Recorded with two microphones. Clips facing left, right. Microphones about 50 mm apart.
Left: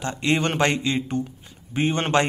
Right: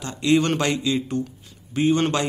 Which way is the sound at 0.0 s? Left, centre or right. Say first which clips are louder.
Right 3 dB; left.